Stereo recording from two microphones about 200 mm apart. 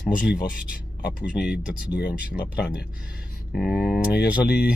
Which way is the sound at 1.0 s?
50° left (ahead or behind).